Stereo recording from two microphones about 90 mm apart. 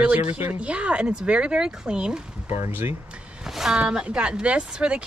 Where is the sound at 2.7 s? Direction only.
25° right (ahead or behind).